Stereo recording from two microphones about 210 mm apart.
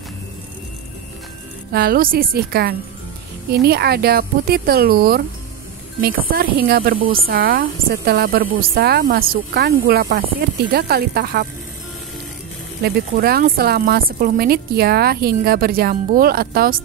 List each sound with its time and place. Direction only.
1.7 s a woman's voice: 45° right (ahead or behind)
12.8 s a woman's voice: 50° right (ahead or behind)